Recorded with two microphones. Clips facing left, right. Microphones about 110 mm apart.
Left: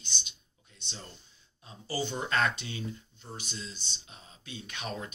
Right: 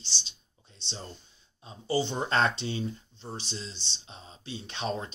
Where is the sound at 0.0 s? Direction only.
30° right (ahead or behind).